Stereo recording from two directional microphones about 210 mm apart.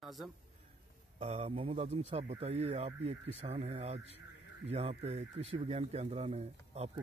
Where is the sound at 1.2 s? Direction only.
30° right (ahead or behind).